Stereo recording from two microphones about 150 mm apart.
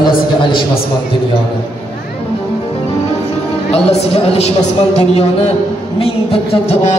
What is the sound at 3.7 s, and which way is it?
A woman's voice, 40° left (ahead or behind).